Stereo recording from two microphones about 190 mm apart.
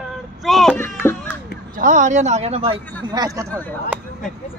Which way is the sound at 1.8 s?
45° right (ahead or behind).